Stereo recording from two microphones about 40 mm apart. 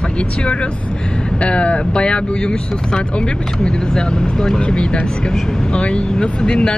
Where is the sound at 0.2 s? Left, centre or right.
Left.